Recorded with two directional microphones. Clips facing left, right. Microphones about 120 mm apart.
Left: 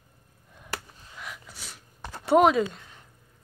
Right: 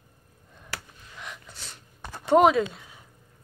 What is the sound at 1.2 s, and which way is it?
Gasp, 5° left (ahead or behind).